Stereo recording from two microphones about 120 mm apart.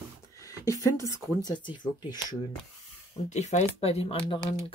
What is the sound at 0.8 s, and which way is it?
Speech, 25° left (ahead or behind).